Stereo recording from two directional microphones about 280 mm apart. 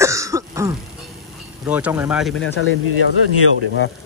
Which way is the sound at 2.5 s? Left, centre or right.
Left.